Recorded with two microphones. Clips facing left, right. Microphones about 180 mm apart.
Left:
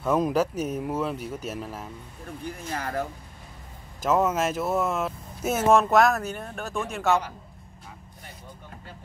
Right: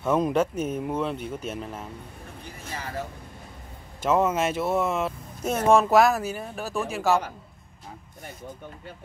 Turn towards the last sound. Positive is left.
turn(degrees=0)  # may be behind; listen again after turning